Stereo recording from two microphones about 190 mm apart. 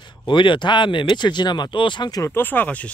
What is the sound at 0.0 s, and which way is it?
Speech, 25° left (ahead or behind).